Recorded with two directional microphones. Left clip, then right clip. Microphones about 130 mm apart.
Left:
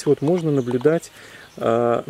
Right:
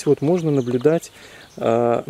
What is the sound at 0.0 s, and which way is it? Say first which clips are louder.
Speech: right 1 dB; 5° right (ahead or behind).